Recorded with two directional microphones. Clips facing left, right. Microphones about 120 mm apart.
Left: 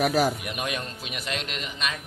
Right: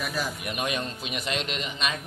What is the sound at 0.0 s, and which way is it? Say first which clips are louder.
Speech: left 9 dB; 70° left (ahead or behind).